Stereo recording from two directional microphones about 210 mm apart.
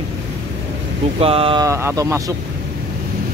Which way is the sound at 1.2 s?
25° right (ahead or behind).